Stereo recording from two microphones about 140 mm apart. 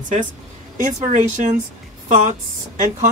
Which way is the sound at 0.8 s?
65° right (ahead or behind).